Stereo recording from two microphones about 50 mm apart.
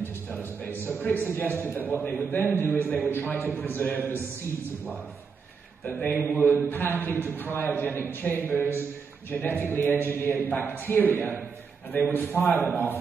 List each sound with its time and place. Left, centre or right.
0.0 s music: left
0.8 s a man's voice: left
5.9 s a man's voice: left
6.1 s a man's voice: left